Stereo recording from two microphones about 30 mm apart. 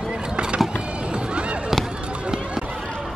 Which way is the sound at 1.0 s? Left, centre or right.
Right.